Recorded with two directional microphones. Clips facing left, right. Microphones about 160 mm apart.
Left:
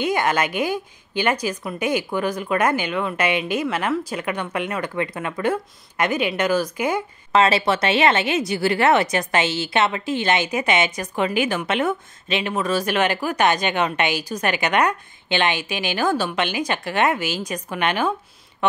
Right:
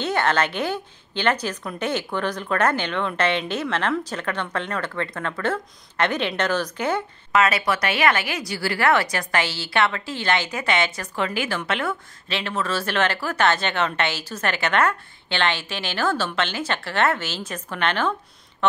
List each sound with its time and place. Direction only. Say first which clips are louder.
0.0 s speech: left 1 dB; 10° left (ahead or behind)
7.3 s speech: left 3 dB; 30° left (ahead or behind); by 18.1 s 10° left (ahead or behind)
18.6 s quack: even; 15° left (ahead or behind)